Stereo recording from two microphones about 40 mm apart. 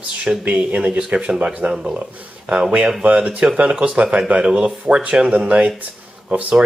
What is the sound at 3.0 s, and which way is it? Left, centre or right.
Speech, right.